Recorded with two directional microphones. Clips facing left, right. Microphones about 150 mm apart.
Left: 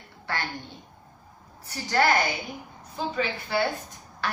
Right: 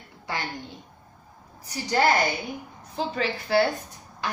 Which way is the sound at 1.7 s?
20° right (ahead or behind).